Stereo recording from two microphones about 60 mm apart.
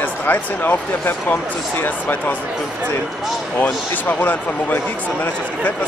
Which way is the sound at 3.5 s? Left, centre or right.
Left.